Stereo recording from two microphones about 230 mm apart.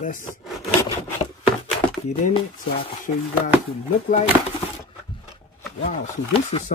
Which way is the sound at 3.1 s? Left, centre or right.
Left.